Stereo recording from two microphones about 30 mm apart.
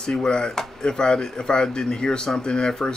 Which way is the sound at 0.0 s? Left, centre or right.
Left.